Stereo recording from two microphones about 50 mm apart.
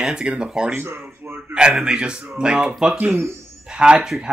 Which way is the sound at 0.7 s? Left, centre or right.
Right.